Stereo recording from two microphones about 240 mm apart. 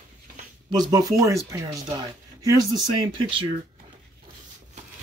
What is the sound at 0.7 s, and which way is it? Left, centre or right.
Speech, centre.